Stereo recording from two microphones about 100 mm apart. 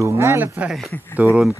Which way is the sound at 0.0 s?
30° right (ahead or behind).